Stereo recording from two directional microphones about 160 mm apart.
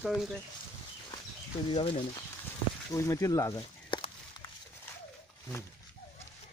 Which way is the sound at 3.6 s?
30° left (ahead or behind).